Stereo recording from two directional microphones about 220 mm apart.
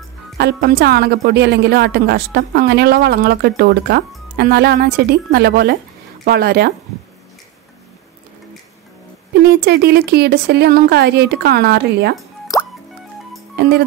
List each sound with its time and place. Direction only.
0.4 s a woman's voice: 45° right (ahead or behind)
9.7 s a woman's voice: 45° right (ahead or behind)
12.5 s music: 15° left (ahead or behind)